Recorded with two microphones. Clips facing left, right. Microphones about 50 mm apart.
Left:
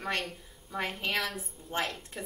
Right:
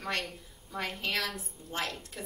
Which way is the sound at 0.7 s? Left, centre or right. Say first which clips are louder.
Left 2 dB; centre.